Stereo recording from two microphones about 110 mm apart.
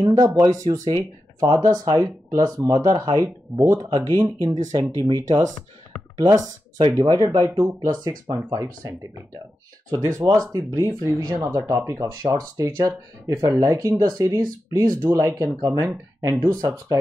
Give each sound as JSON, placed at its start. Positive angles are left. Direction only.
{"t": 0.4, "sound": "speech", "side_deg": -35}